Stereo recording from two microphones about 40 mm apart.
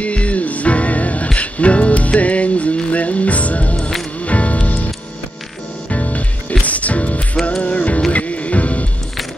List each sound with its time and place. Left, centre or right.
0.0 s music: left
5.9 s music: left